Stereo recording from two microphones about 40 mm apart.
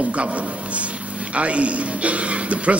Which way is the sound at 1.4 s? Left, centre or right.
Right.